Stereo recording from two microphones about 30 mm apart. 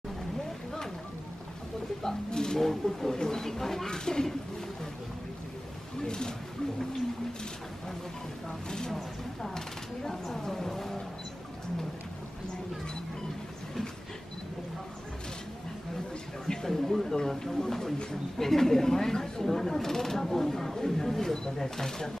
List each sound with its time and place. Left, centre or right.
2.3 s speech: left
2.6 s speech: centre
6.0 s speech: left
8.5 s speech: left
10.0 s speech: centre
10.5 s vehicle: centre
16.6 s a sound: centre
18.4 s speech: centre